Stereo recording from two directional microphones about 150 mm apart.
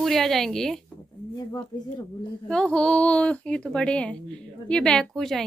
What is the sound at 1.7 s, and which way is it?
Speech, 25° left (ahead or behind).